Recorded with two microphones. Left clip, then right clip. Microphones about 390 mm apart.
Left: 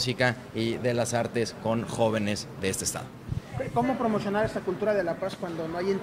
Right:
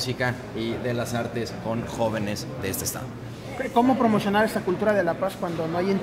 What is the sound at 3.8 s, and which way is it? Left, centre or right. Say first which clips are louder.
Speech: right 6 dB; right.